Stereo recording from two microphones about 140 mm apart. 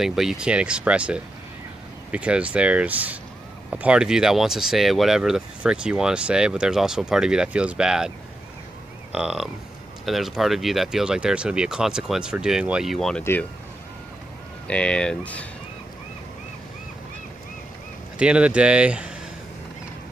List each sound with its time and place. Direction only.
0.0 s speech: 5° right (ahead or behind)
9.1 s speech: 5° right (ahead or behind)
13.2 s speech: 15° left (ahead or behind)
14.7 s speech: 10° left (ahead or behind)
18.2 s speech: 10° right (ahead or behind)